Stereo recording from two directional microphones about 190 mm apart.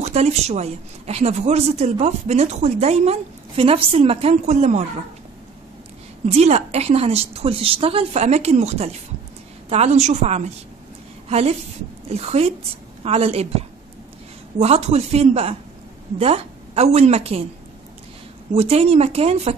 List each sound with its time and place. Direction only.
0.0 s a woman's voice: 35° right (ahead or behind)
6.2 s a woman's voice: 35° right (ahead or behind)
18.5 s a woman's voice: 35° right (ahead or behind)